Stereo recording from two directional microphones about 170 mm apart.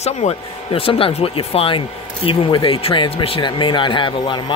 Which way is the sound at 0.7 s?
35° left (ahead or behind).